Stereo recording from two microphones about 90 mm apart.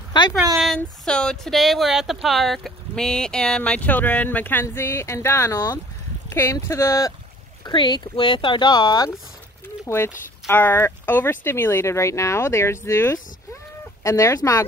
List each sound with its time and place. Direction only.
0.1 s speech: 55° left (ahead or behind)
0.7 s speech: 10° left (ahead or behind); by 7.2 s 35° left (ahead or behind)
7.6 s speech: 55° left (ahead or behind)
9.8 s speech: 30° left (ahead or behind)